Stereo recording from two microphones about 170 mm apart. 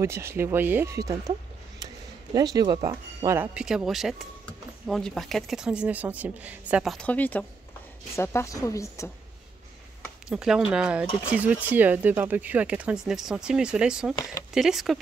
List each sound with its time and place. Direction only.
0.0 s speech: 15° right (ahead or behind)
2.3 s speech: 20° right (ahead or behind)
3.3 s a woman's voice: 5° right (ahead or behind); by 9.1 s 15° left (ahead or behind)
10.2 s speech: 5° right (ahead or behind)